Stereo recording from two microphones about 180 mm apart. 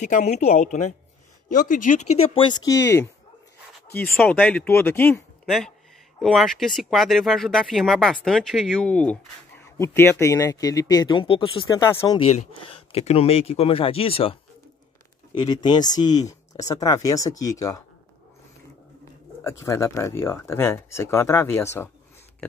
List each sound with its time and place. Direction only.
0.0 s speech: 40° left (ahead or behind)
2.7 s speech: 15° left (ahead or behind)
12.4 s speech: 35° left (ahead or behind)
15.3 s speech: 25° left (ahead or behind)
19.6 s speech: 15° left (ahead or behind)